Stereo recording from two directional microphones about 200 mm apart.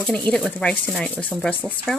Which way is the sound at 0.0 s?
5° left (ahead or behind).